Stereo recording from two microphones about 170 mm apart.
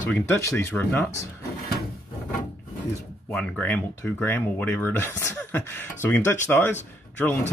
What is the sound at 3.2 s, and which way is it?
Speech, 5° left (ahead or behind).